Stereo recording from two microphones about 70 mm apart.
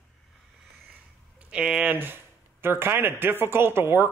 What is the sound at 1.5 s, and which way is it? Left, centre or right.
Speech, centre.